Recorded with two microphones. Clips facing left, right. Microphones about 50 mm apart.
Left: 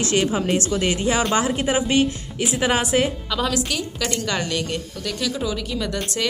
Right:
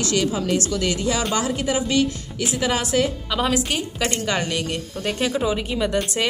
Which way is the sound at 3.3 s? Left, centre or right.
Right.